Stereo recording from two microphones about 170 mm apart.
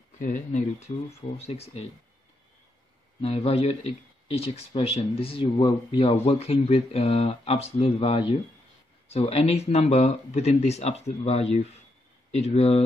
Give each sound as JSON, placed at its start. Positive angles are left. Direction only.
{"t": 0.2, "sound": "speech", "side_deg": 50}
{"t": 3.2, "sound": "speech", "side_deg": 35}